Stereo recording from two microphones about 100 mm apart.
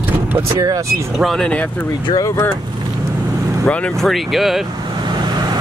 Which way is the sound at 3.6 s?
10° left (ahead or behind).